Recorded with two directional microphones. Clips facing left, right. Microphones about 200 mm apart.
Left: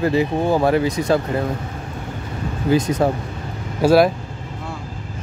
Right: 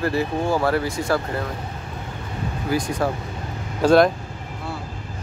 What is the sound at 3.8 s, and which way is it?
Speech, 5° left (ahead or behind).